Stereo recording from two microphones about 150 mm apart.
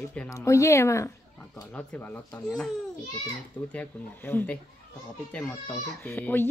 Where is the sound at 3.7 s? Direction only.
10° left (ahead or behind).